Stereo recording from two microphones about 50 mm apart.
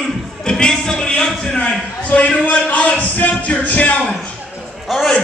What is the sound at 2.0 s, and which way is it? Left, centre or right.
Music, left.